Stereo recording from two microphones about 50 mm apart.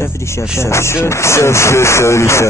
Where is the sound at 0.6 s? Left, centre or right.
Left.